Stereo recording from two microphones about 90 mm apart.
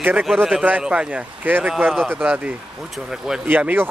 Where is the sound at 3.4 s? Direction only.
20° right (ahead or behind).